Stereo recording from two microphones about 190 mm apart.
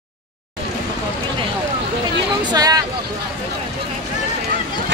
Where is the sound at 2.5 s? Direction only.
20° right (ahead or behind).